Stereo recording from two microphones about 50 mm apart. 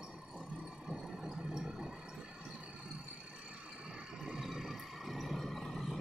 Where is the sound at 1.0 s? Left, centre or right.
Centre.